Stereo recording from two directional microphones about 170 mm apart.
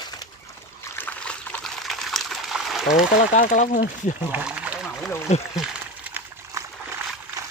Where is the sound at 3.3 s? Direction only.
50° left (ahead or behind).